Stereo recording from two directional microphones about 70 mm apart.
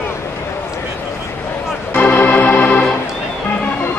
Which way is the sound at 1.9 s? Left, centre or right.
Left.